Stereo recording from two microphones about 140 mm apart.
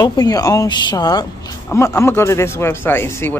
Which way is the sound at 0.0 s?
25° left (ahead or behind).